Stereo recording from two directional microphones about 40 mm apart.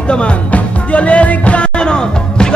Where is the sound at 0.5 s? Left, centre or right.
Left.